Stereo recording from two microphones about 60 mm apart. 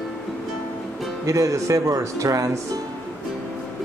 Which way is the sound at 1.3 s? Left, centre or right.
Right.